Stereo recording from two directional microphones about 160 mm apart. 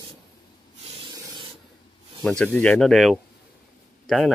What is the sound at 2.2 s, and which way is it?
Speech, 5° left (ahead or behind).